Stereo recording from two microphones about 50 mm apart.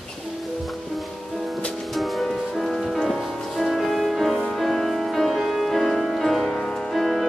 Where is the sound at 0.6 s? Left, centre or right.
Centre.